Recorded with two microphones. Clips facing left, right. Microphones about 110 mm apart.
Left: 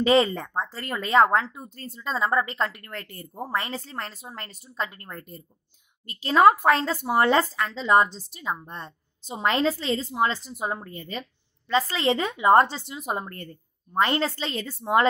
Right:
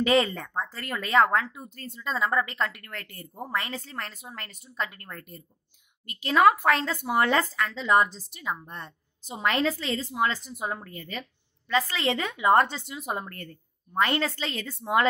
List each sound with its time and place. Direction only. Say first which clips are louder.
0.0 s a woman's voice: left 3 dB; 30° left (ahead or behind)